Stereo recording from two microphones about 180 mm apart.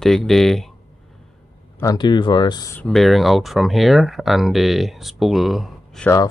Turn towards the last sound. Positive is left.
turn(degrees=0)  # may be behind; listen again after turning